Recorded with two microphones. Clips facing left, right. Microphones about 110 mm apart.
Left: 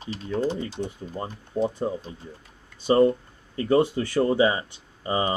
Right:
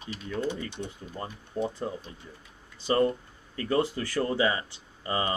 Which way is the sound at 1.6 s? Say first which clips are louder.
Left 6 dB; 20° left (ahead or behind).